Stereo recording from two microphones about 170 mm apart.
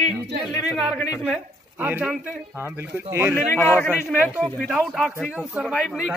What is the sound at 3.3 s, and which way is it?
Speech, 10° left (ahead or behind).